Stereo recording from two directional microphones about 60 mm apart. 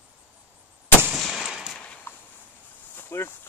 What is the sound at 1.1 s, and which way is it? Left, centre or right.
Gunshot, centre.